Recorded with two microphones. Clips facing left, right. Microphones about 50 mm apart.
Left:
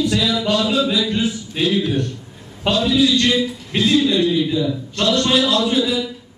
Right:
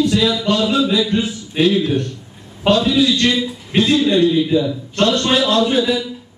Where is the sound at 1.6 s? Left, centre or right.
Right.